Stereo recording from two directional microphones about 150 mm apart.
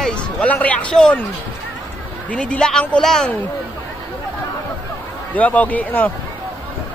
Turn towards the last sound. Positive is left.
turn(degrees=10)  # may be behind; listen again after turning